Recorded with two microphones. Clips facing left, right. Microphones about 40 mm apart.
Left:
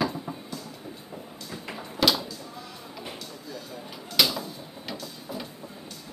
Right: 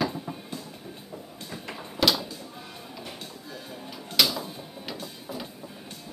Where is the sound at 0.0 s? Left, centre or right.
Centre.